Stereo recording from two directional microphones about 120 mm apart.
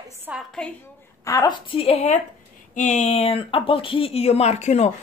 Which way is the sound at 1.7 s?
50° left (ahead or behind).